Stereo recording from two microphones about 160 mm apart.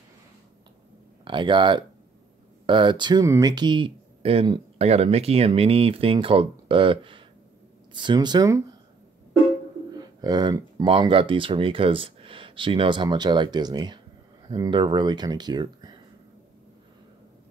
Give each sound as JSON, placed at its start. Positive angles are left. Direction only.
{"t": 1.2, "sound": "speech", "side_deg": -30}
{"t": 9.9, "sound": "speech", "side_deg": -25}